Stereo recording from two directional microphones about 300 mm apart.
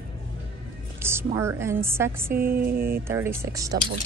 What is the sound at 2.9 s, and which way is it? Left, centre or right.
Speech, centre.